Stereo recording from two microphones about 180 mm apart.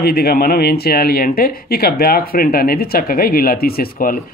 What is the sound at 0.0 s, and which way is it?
Speech, 60° left (ahead or behind).